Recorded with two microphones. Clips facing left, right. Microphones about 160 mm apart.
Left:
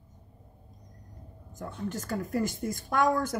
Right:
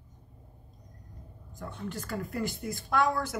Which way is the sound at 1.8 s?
45° left (ahead or behind).